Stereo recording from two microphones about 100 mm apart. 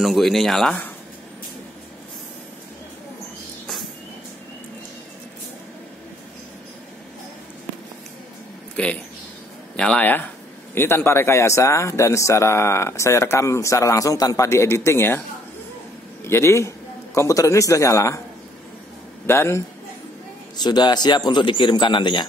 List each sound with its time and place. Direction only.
0.0 s speech: centre (ahead or behind)
8.8 s speech: 10° left (ahead or behind)
16.3 s a man's voice: 25° left (ahead or behind)
19.2 s speech: 25° left (ahead or behind)
20.5 s a man's voice: 45° left (ahead or behind)